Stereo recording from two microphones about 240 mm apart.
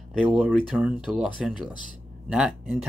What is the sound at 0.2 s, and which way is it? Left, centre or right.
Speech, centre.